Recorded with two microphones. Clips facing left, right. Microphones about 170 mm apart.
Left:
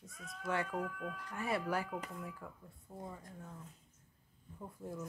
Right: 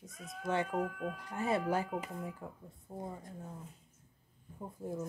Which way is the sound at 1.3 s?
25° right (ahead or behind).